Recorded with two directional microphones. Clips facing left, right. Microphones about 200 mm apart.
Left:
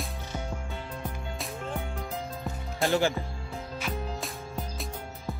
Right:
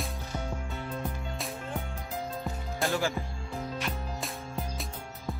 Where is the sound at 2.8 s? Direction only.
25° left (ahead or behind).